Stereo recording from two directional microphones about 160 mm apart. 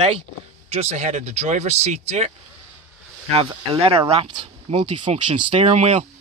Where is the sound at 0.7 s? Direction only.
45° right (ahead or behind).